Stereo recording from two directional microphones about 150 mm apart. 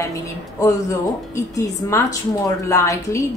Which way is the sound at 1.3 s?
20° left (ahead or behind).